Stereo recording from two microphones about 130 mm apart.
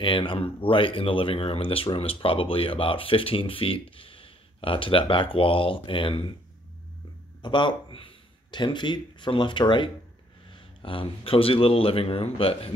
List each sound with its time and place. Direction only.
0.0 s speech: 40° left (ahead or behind)
7.4 s speech: 35° left (ahead or behind)